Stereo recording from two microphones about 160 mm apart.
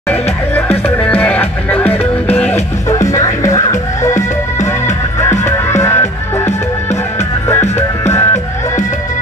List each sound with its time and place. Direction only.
0.1 s music: 15° left (ahead or behind)
1.9 s music: 40° left (ahead or behind)
2.9 s music: 20° left (ahead or behind)
5.7 s music: 15° left (ahead or behind)
8.0 s music: 15° left (ahead or behind)